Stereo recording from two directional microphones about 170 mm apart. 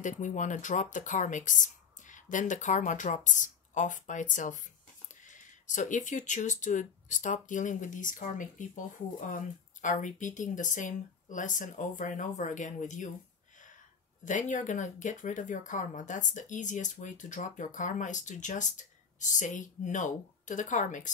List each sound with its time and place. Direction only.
0.0 s speech: 45° left (ahead or behind)
14.2 s speech: 50° left (ahead or behind)